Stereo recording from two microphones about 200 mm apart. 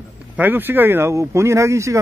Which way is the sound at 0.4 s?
10° right (ahead or behind).